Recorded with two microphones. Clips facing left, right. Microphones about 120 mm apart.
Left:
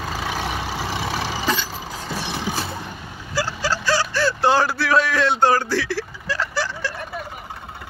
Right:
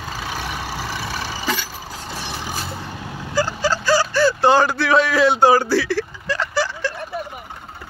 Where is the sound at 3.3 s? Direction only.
Centre (ahead or behind).